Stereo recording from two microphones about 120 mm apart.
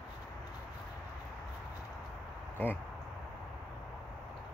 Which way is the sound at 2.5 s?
15° left (ahead or behind).